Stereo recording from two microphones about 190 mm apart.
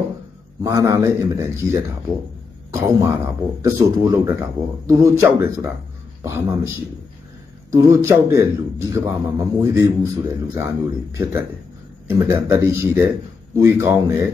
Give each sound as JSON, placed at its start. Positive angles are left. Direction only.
{"t": 0.6, "sound": "speech", "side_deg": -15}
{"t": 7.7, "sound": "speech", "side_deg": -15}